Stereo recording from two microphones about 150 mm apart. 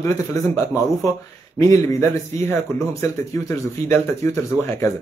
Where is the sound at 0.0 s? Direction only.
20° left (ahead or behind).